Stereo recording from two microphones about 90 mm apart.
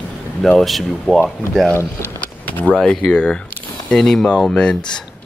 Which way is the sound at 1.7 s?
25° left (ahead or behind).